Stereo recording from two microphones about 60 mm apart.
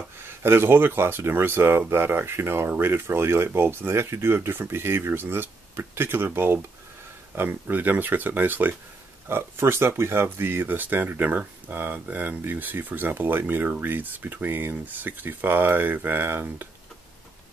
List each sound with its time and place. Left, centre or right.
0.2 s speech: right
9.3 s speech: right